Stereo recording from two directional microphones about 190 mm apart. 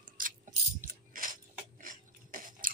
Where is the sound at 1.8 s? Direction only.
45° right (ahead or behind).